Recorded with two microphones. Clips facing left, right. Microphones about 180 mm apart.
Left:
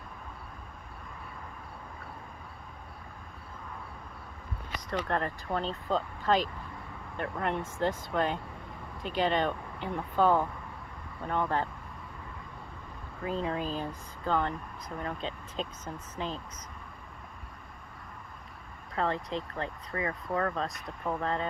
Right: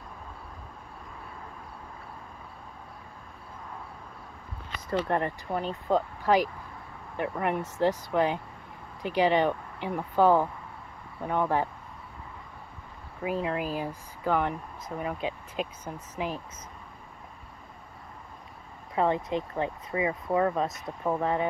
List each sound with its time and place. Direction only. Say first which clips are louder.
4.8 s speech: right 4 dB; 30° right (ahead or behind); by 11.6 s 10° right (ahead or behind)
13.2 s speech: right 3 dB; 10° right (ahead or behind)
18.9 s speech: right 5 dB; 10° right (ahead or behind)
21.2 s speech: right 4 dB; 10° right (ahead or behind)